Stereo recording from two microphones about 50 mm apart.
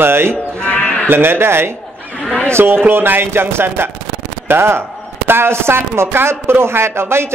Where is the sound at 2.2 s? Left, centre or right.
Centre.